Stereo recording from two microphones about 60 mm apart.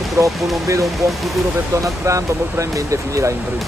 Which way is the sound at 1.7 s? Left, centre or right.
Right.